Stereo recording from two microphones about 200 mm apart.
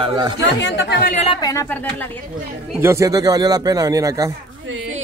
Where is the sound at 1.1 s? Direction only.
30° left (ahead or behind).